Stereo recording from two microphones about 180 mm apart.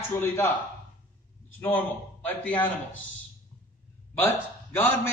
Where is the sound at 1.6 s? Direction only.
10° left (ahead or behind).